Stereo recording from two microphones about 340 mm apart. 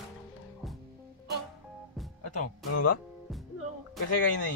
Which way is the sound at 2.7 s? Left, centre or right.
Left.